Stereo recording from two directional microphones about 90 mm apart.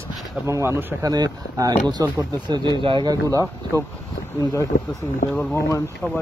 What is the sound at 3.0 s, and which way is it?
Speech, 40° right (ahead or behind).